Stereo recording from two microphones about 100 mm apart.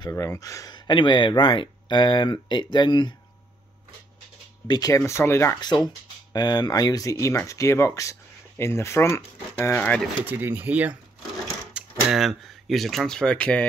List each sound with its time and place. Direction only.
0.1 s speech: 30° left (ahead or behind)
0.7 s speech: 50° left (ahead or behind)
4.6 s speech: 40° left (ahead or behind)
5.6 s speech: 45° left (ahead or behind); by 9.8 s 25° left (ahead or behind)
9.8 s speech: 10° left (ahead or behind)
10.2 s speech: 20° right (ahead or behind)
11.7 s speech: 5° right (ahead or behind); by 13.7 s 10° left (ahead or behind)